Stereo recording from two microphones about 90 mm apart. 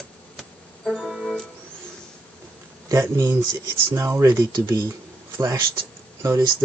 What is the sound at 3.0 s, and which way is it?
Speech, 25° right (ahead or behind).